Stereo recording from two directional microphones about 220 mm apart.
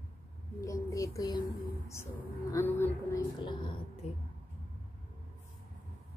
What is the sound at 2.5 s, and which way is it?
A woman's voice, 10° left (ahead or behind).